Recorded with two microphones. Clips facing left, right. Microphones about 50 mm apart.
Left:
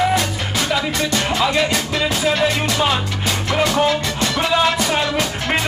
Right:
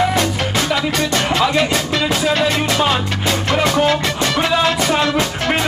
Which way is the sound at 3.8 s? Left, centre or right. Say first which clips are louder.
Right 2 dB; right.